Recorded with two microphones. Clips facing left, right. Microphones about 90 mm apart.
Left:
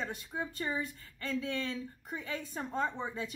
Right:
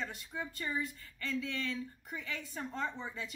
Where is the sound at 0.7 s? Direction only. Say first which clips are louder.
Left 1 dB; 45° left (ahead or behind).